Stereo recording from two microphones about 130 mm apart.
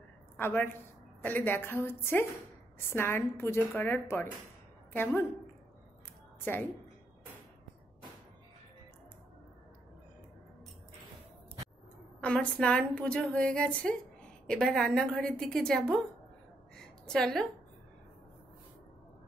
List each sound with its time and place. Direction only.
0.4 s a woman's voice: 15° left (ahead or behind)
12.2 s a woman's voice: 10° left (ahead or behind)
16.7 s a sound: 5° left (ahead or behind)